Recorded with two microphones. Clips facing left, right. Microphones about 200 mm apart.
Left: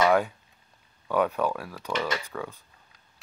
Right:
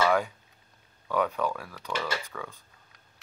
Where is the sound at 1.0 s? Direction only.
15° left (ahead or behind).